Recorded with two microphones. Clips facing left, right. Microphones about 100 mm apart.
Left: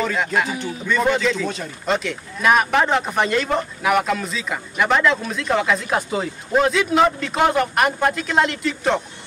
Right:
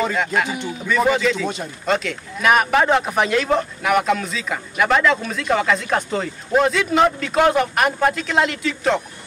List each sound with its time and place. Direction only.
0.1 s speech: centre (ahead or behind)
0.5 s speech: 20° right (ahead or behind)
0.8 s speech: 5° right (ahead or behind)